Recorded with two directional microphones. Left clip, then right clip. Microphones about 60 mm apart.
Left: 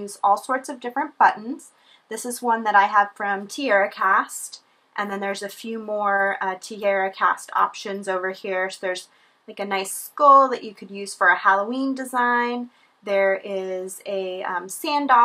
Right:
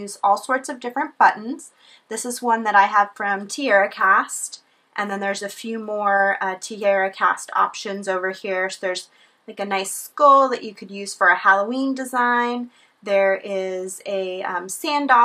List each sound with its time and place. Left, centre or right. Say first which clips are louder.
0.0 s speech: right 1 dB; right